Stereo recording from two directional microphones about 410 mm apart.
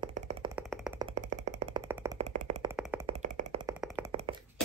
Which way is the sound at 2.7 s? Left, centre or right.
Centre.